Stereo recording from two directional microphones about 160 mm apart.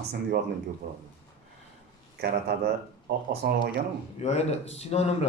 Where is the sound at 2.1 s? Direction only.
90° right.